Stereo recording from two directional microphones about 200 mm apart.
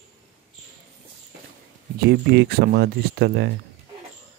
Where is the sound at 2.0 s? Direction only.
55° right (ahead or behind).